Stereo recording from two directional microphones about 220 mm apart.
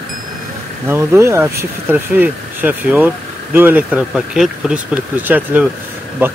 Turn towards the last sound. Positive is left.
turn(degrees=-10)  # may be behind; listen again after turning